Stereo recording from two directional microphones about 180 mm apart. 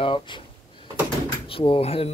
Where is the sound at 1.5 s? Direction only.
30° left (ahead or behind).